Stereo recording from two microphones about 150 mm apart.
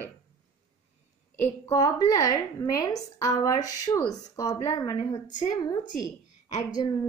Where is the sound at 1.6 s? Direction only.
25° left (ahead or behind).